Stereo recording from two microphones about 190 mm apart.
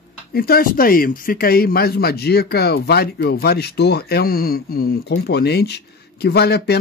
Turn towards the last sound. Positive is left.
turn(degrees=60)  # may be behind; listen again after turning